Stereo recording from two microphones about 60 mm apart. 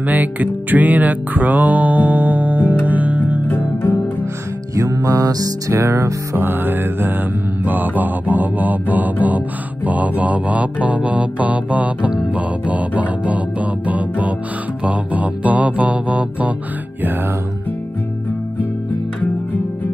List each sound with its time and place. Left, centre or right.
0.0 s music: right
3.4 s music: left
4.7 s music: right
5.7 s music: right
6.3 s mantra: right